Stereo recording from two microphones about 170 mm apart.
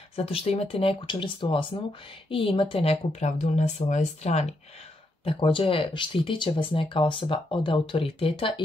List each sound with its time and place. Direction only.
0.1 s speech: 35° left (ahead or behind)